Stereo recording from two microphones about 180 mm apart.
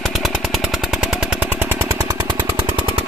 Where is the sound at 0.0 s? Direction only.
Centre (ahead or behind); by 2.5 s 25° right (ahead or behind).